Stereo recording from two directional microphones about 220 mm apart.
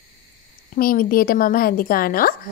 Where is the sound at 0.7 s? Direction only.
40° left (ahead or behind).